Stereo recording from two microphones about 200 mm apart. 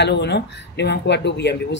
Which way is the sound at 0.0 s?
60° left (ahead or behind).